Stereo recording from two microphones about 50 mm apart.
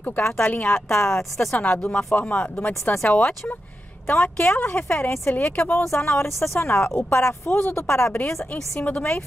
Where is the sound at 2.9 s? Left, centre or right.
Left.